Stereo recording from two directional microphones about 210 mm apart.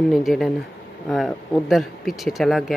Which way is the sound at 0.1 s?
Centre (ahead or behind).